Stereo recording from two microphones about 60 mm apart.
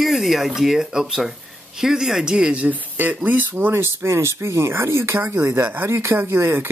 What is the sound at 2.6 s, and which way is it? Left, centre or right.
Speech, right.